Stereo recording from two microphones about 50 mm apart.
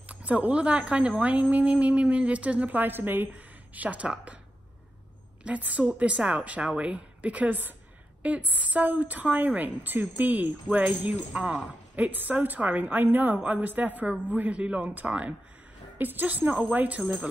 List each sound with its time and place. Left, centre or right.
0.1 s a woman's voice: right
5.4 s a woman's voice: right